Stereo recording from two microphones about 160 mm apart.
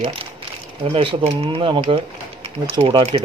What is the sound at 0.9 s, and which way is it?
Speech, 35° right (ahead or behind).